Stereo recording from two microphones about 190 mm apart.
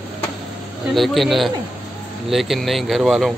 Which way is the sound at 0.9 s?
Centre (ahead or behind).